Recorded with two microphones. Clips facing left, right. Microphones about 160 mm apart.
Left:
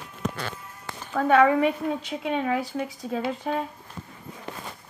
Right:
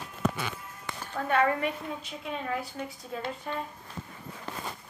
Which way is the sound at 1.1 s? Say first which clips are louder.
Left 7 dB; 90° left.